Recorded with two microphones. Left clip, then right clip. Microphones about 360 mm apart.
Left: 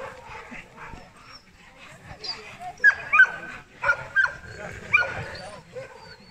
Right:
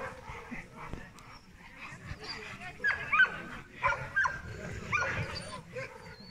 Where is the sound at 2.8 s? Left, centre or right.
Left.